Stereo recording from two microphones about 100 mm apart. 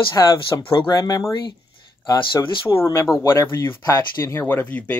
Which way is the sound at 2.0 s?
50° left (ahead or behind).